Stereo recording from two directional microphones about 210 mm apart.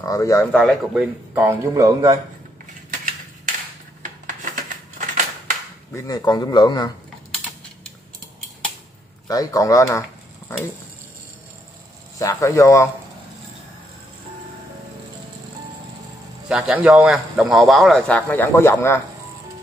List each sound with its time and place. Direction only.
0.0 s speech: 15° left (ahead or behind)
0.5 s a man's voice: centre (ahead or behind)
1.3 s a man's voice: 10° right (ahead or behind)
5.9 s a man's voice: 20° left (ahead or behind)
9.3 s speech: 15° left (ahead or behind)
12.2 s speech: 15° left (ahead or behind)
16.4 s a man's voice: 5° right (ahead or behind); by 18.9 s 10° left (ahead or behind)